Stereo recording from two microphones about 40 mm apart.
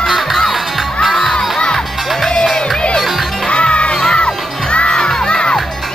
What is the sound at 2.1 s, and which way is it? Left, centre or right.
Music, centre.